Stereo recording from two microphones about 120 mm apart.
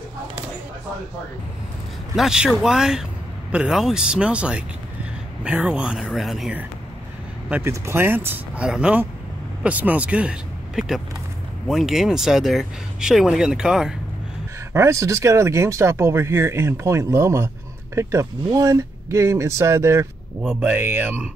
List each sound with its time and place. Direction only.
2.1 s speech: 5° right (ahead or behind)
7.4 s speech: 15° right (ahead or behind)
14.7 s speech: 25° right (ahead or behind)